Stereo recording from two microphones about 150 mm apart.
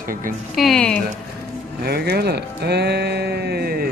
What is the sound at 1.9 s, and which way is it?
Speech, 90° right.